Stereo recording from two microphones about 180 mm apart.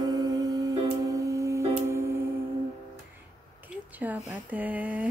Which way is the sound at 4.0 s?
10° right (ahead or behind).